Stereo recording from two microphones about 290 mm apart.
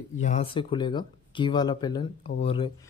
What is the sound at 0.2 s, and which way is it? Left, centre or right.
Speech, left.